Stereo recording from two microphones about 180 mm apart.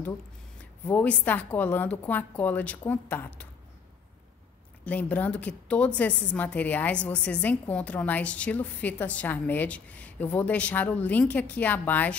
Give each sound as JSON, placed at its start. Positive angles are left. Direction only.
{"t": 0.8, "sound": "a woman's voice", "side_deg": 10}
{"t": 4.8, "sound": "a woman's voice", "side_deg": 10}